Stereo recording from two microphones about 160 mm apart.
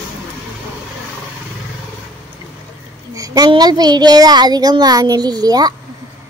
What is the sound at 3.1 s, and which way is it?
A child's voice, 20° right (ahead or behind).